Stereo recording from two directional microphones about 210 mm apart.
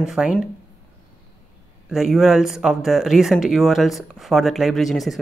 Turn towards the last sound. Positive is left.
turn(degrees=0)  # may be behind; listen again after turning